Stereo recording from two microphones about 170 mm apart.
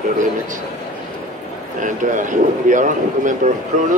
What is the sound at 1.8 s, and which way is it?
Speech, 50° right (ahead or behind).